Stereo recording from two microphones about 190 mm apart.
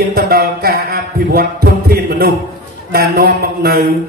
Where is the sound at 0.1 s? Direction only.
55° right (ahead or behind).